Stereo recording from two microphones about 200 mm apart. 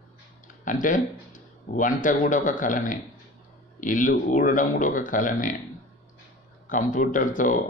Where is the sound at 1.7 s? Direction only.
40° left (ahead or behind).